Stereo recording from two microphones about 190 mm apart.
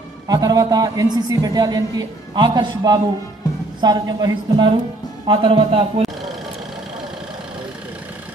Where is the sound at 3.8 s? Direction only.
20° right (ahead or behind).